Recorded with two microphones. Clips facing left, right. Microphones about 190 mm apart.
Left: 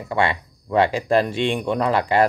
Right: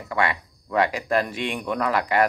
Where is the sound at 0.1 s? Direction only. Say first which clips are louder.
Left 3 dB; 25° left (ahead or behind).